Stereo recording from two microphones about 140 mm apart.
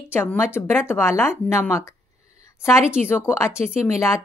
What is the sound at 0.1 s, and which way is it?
Speech, 15° left (ahead or behind).